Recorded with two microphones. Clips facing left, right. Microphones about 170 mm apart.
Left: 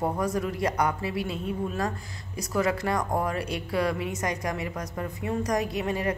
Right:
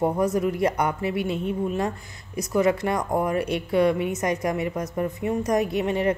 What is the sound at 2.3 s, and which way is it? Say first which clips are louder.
A woman's voice: right 5 dB; 20° right (ahead or behind).